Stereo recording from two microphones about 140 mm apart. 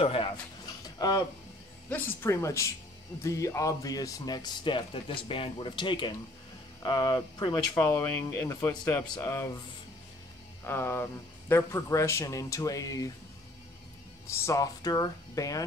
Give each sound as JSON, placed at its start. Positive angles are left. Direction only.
{"t": 0.0, "sound": "speech", "side_deg": 45}
{"t": 0.8, "sound": "a sound", "side_deg": 25}
{"t": 1.9, "sound": "a man's voice", "side_deg": 15}
{"t": 7.7, "sound": "a man's voice", "side_deg": 20}
{"t": 10.6, "sound": "a man's voice", "side_deg": 15}
{"t": 14.2, "sound": "a man's voice", "side_deg": 20}